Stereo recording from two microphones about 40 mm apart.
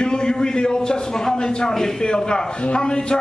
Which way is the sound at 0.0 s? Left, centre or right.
Left.